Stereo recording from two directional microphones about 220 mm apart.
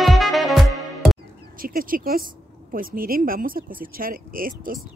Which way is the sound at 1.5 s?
40° right (ahead or behind).